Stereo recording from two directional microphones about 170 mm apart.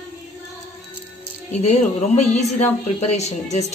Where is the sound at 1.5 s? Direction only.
40° left (ahead or behind).